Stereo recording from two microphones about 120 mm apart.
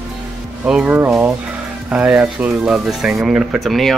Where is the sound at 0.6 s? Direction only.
10° right (ahead or behind).